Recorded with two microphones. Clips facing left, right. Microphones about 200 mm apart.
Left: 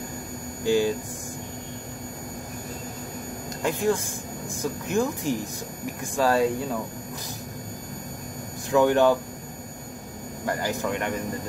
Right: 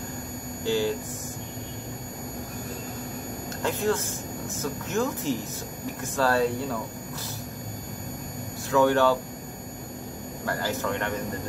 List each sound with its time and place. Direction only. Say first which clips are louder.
0.7 s a sound: left 3 dB; 15° left (ahead or behind)
3.6 s speech: left 2 dB; 15° left (ahead or behind)
8.6 s speech: left 2 dB; 15° left (ahead or behind)
10.4 s speech: left 2 dB; 15° left (ahead or behind)